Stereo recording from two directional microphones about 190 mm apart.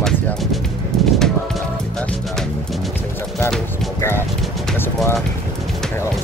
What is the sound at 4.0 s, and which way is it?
Speech, 10° left (ahead or behind).